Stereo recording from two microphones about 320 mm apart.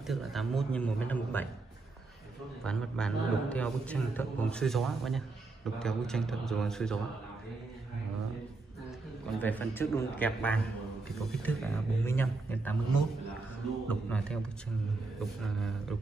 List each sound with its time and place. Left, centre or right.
0.0 s a man's voice: centre
2.6 s a man's voice: centre
9.4 s a man's voice: centre
13.8 s a man's voice: centre